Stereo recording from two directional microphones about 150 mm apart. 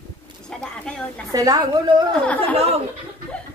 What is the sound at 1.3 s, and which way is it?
Speech, 25° right (ahead or behind).